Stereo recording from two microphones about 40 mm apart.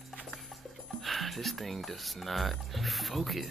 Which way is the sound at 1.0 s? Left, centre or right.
Centre.